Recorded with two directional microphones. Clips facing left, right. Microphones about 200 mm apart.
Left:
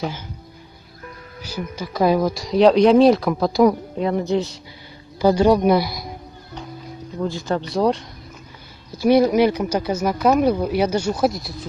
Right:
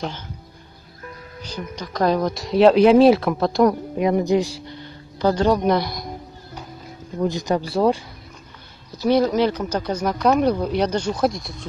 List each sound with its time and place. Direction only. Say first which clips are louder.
1.4 s speech: left 3 dB; 5° left (ahead or behind)
4.0 s speech: right 2 dB; 15° right (ahead or behind)
5.2 s speech: left 3 dB; 10° left (ahead or behind)
7.2 s speech: right 2 dB; 15° right (ahead or behind)
7.7 s speech: even; 5° right (ahead or behind)
8.9 s speech: left 3 dB; 10° left (ahead or behind)